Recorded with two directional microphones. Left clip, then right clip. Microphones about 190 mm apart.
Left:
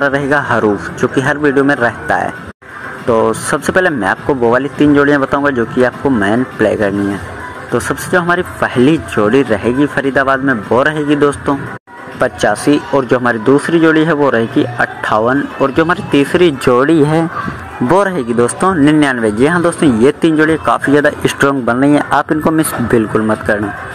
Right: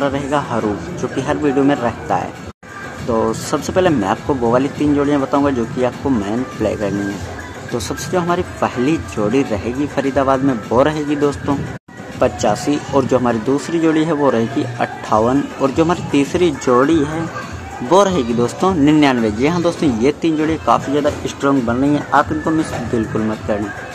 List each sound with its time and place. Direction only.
0.0 s speech: 15° left (ahead or behind)
16.6 s speech: 30° left (ahead or behind); by 20.5 s 10° left (ahead or behind)
20.6 s speech: 20° left (ahead or behind)